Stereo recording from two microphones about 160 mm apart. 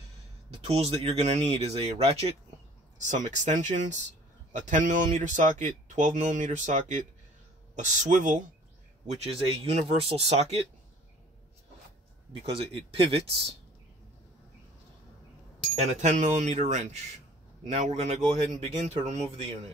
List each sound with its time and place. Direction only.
0.6 s speech: 40° right (ahead or behind)
12.3 s speech: 35° right (ahead or behind)
15.8 s speech: 45° right (ahead or behind)